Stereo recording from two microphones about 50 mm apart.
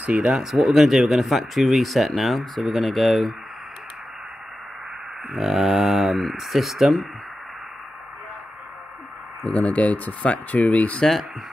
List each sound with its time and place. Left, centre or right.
0.1 s speech: centre
5.3 s speech: centre
9.4 s speech: left